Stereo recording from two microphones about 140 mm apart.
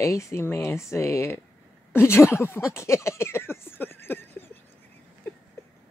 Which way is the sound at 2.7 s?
20° left (ahead or behind).